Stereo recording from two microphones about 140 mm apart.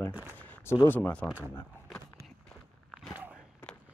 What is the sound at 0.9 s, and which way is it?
Speech, 10° left (ahead or behind).